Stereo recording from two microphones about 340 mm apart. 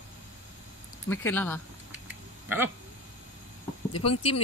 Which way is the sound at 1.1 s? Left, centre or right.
Centre.